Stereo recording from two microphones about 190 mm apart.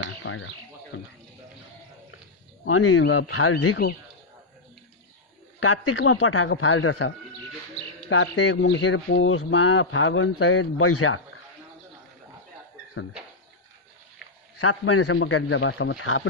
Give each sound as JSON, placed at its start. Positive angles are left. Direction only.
{"t": 0.2, "sound": "bird", "side_deg": 80}
{"t": 2.6, "sound": "speech", "side_deg": 85}
{"t": 5.9, "sound": "speech", "side_deg": 85}
{"t": 8.1, "sound": "speech", "side_deg": 75}
{"t": 14.7, "sound": "speech", "side_deg": 90}